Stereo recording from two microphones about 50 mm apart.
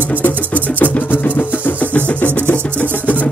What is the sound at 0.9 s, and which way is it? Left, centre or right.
Music, left.